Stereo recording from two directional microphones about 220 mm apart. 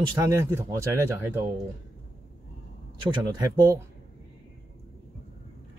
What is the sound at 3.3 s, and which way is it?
Speech, 15° right (ahead or behind).